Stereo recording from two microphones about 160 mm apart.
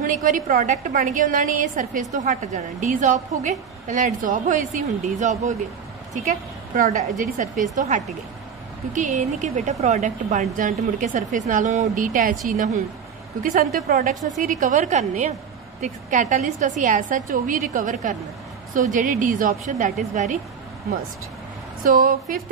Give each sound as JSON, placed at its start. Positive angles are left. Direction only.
{"t": 0.0, "sound": "a woman's voice", "side_deg": -55}
{"t": 6.7, "sound": "a woman's voice", "side_deg": -55}
{"t": 14.5, "sound": "a woman's voice", "side_deg": -50}
{"t": 21.8, "sound": "a woman's voice", "side_deg": -60}